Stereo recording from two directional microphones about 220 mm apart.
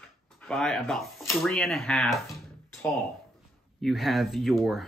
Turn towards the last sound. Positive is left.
turn(degrees=0)  # may be behind; listen again after turning